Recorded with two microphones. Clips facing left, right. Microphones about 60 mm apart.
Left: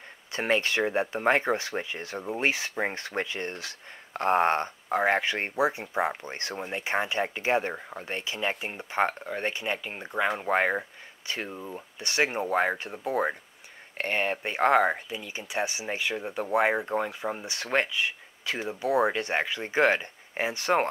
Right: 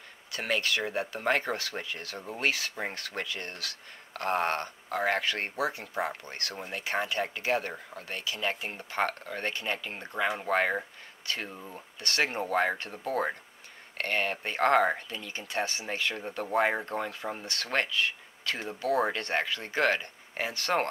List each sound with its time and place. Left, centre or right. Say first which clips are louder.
0.3 s speech: left 4 dB; left